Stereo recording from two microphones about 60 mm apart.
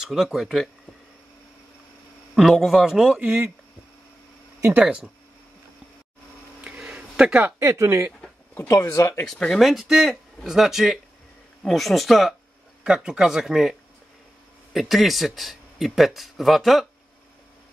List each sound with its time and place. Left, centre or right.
0.0 s speech: centre
2.3 s speech: centre
3.2 s speech: right
4.7 s speech: centre
6.6 s a sound: centre
7.5 s speech: right
8.6 s speech: left
9.6 s speech: centre
12.8 s speech: centre